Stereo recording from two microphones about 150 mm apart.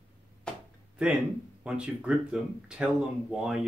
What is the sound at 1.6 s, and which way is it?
Speech, 5° right (ahead or behind).